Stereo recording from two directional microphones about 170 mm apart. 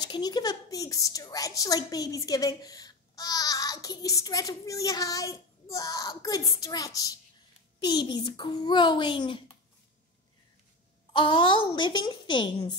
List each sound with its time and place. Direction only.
0.0 s a woman's voice: 25° left (ahead or behind)
11.1 s a woman's voice: 30° left (ahead or behind)